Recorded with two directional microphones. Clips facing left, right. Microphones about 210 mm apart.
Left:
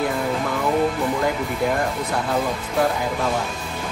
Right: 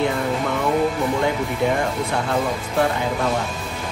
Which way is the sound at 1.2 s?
Centre (ahead or behind).